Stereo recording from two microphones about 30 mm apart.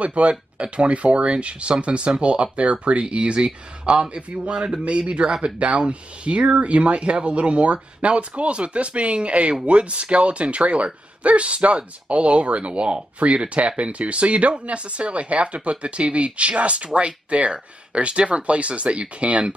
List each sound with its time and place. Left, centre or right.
0.0 s speech: right